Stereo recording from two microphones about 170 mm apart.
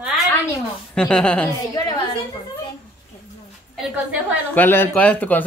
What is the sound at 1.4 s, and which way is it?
Speech, 20° left (ahead or behind).